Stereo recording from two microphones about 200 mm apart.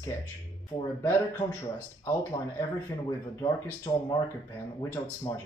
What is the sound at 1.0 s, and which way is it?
Speech, 15° left (ahead or behind).